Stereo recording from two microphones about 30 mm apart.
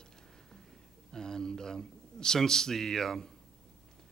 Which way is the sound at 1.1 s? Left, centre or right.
Centre.